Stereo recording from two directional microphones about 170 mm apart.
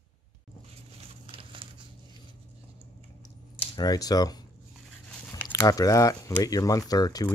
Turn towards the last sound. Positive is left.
turn(degrees=20)  # may be behind; listen again after turning